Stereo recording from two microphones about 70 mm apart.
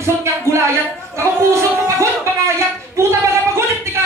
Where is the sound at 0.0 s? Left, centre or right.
Right.